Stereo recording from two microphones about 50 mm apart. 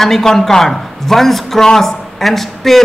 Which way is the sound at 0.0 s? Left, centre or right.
Centre.